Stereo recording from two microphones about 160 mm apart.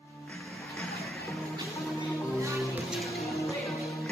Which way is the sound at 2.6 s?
Centre (ahead or behind).